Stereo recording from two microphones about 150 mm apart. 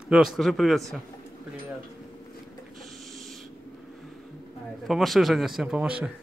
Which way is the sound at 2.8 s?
Centre (ahead or behind).